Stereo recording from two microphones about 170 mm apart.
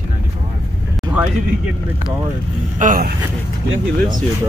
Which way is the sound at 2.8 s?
55° right (ahead or behind).